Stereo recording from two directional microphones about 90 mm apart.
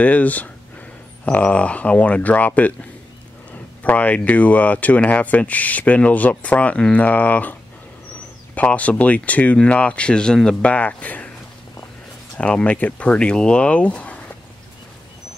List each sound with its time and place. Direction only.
0.0 s speech: 15° left (ahead or behind)
8.5 s speech: 15° left (ahead or behind)
12.4 s speech: 15° left (ahead or behind)